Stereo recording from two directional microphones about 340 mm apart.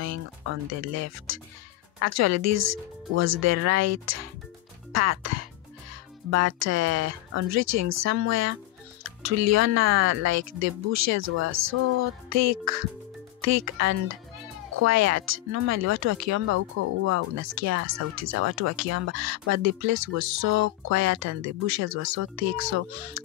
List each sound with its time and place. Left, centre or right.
0.0 s speech: right